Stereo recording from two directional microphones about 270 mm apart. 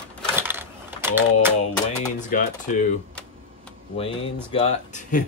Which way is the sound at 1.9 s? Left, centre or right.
Left.